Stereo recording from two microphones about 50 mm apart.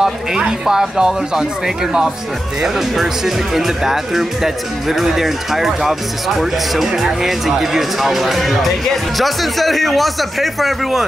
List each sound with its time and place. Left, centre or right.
0.0 s speech: centre